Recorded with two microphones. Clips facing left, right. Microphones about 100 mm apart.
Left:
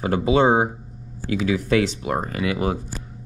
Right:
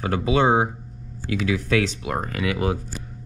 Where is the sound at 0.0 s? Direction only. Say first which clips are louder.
Left 2 dB; 30° left (ahead or behind).